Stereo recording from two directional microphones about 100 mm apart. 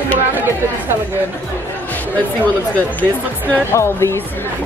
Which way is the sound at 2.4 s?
15° left (ahead or behind).